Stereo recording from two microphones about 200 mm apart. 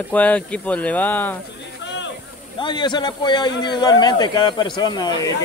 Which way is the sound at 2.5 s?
25° left (ahead or behind).